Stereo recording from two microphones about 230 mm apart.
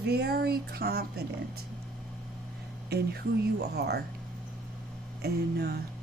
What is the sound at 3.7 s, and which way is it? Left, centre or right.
Speech, right.